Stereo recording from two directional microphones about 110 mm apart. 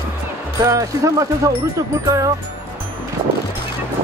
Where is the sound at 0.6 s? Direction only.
30° right (ahead or behind).